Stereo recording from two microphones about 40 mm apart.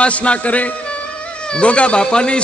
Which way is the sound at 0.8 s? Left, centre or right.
Left.